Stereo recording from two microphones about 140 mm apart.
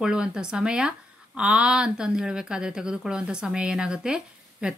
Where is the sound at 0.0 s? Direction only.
5° right (ahead or behind).